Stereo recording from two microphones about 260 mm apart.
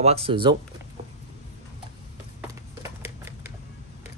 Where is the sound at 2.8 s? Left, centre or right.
Centre.